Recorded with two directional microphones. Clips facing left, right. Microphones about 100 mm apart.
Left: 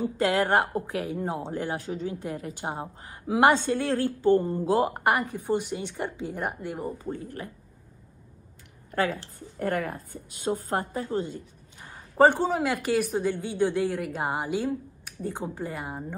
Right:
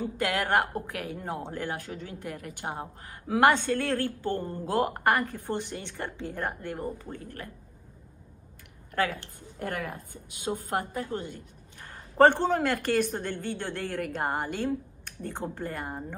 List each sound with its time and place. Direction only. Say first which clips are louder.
0.0 s a woman's voice: left 5 dB; 20° left (ahead or behind)
8.9 s a woman's voice: left 2 dB; 20° left (ahead or behind)
9.6 s a woman's voice: left 5 dB; 50° left (ahead or behind)
10.7 s a woman's voice: left 2 dB; 20° left (ahead or behind)